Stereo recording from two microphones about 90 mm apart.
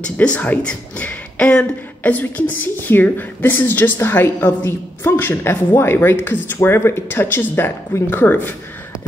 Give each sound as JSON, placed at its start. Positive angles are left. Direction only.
{"t": 0.0, "sound": "speech", "side_deg": 10}